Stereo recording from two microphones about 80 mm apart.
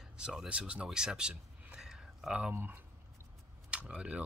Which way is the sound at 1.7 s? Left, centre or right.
Centre.